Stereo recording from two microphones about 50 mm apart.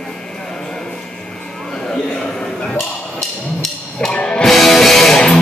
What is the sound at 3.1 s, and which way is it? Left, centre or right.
Music, centre.